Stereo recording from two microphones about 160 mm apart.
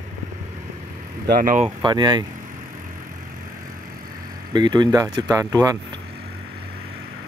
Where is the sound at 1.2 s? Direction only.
60° right (ahead or behind).